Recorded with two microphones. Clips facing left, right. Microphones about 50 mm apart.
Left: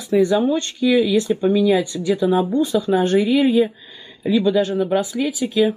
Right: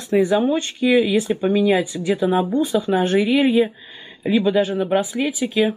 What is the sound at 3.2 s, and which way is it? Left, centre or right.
Speech, right.